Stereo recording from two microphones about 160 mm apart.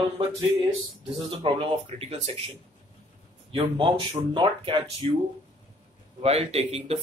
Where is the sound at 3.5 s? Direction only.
30° right (ahead or behind).